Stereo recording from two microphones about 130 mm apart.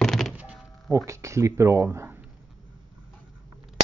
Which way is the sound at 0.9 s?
25° right (ahead or behind).